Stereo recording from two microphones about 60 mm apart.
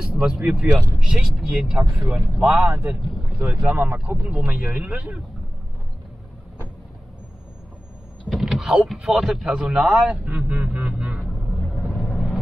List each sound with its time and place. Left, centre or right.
0.1 s speech: centre
2.0 s speech: right
2.4 s speech: centre
8.3 s speech: centre
10.2 s vehicle: right
12.0 s vehicle: centre